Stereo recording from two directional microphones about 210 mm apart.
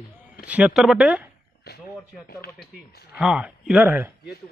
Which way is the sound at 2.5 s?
Centre (ahead or behind).